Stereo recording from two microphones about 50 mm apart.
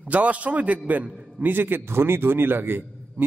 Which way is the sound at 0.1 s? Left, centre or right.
Right.